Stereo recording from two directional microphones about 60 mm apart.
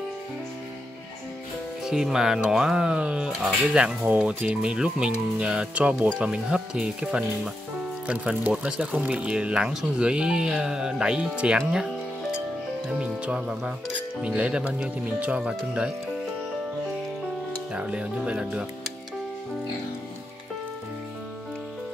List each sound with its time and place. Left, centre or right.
1.9 s speech: centre
8.1 s speech: right
17.7 s speech: centre